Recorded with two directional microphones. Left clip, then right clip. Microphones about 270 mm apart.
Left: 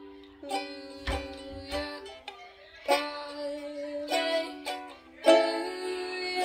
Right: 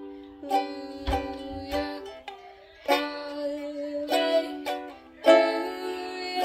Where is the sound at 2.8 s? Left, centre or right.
Right.